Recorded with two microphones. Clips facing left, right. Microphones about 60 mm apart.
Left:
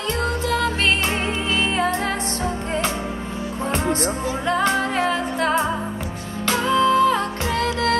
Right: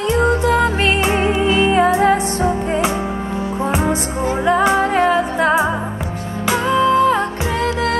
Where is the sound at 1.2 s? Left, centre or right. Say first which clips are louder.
Right 8 dB; centre.